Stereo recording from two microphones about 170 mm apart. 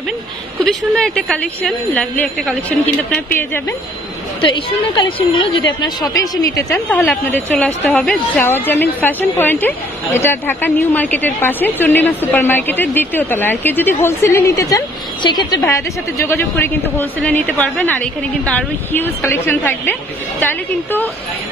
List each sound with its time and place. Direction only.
0.7 s speech: 5° left (ahead or behind)
4.4 s a woman's voice: 30° left (ahead or behind)
7.0 s a woman's voice: 10° left (ahead or behind)